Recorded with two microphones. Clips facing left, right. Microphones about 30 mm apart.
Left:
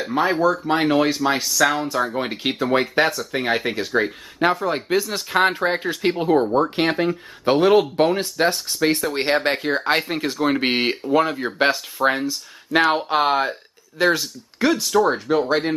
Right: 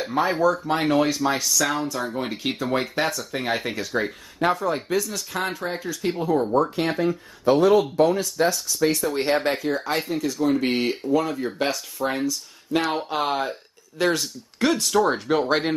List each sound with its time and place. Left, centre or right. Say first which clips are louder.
0.1 s speech: left 2 dB; centre
2.1 s speech: left 4 dB; left
12.8 s speech: left 6 dB; centre